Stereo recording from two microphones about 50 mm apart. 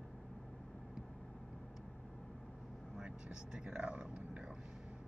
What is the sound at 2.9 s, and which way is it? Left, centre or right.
Speech, centre.